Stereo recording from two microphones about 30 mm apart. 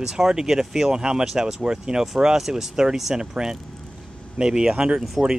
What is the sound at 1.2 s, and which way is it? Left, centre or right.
Speech, centre.